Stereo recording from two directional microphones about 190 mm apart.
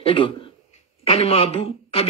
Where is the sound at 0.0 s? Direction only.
30° left (ahead or behind).